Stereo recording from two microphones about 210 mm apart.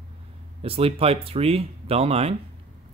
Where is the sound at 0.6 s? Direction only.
25° right (ahead or behind).